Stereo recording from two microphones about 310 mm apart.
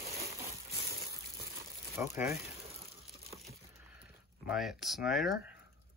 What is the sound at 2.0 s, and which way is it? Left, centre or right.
Speech, centre.